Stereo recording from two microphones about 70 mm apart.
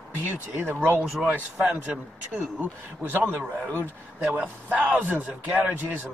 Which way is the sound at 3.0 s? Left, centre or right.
Right.